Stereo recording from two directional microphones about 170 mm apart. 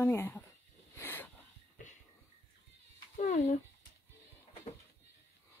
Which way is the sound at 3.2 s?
40° left (ahead or behind).